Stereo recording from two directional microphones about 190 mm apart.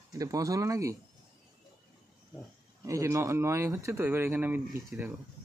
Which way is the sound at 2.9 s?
15° right (ahead or behind).